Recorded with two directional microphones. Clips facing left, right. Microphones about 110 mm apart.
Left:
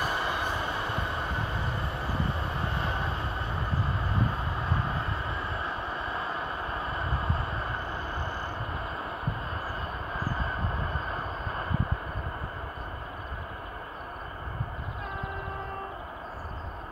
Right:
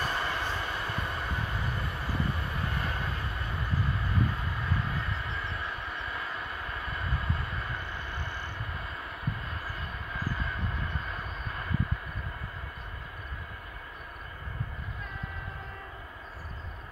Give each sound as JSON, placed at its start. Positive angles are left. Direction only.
{"t": 0.0, "sound": "train", "side_deg": 15}
{"t": 5.4, "sound": "vehicle", "side_deg": 35}
{"t": 10.1, "sound": "vehicle", "side_deg": 35}